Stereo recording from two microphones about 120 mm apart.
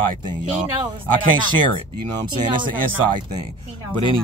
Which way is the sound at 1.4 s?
40° right (ahead or behind).